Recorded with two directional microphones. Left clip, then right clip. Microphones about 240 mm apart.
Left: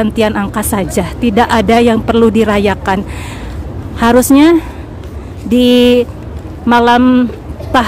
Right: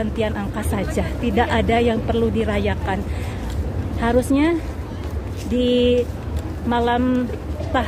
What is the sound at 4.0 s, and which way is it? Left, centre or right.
A woman's voice, left.